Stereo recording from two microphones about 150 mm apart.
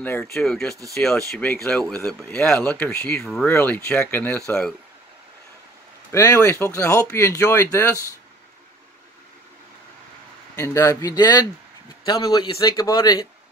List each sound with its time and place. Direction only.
0.0 s speech: 10° left (ahead or behind)
6.1 s speech: 20° left (ahead or behind)
10.5 s speech: 20° left (ahead or behind)